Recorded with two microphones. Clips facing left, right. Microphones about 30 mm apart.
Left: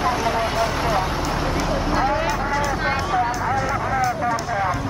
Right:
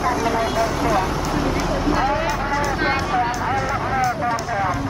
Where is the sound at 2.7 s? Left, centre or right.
Centre.